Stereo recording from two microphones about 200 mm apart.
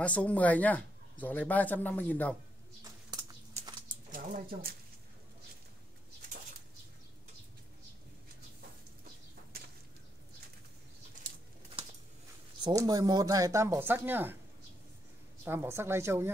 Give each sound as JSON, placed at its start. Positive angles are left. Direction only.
{"t": 0.0, "sound": "speech", "side_deg": 5}
{"t": 2.8, "sound": "typing", "side_deg": -20}
{"t": 12.6, "sound": "speech", "side_deg": -20}
{"t": 15.4, "sound": "speech", "side_deg": -10}